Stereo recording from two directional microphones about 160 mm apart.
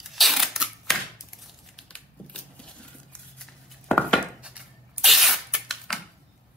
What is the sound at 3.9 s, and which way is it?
Chopping, 5° left (ahead or behind).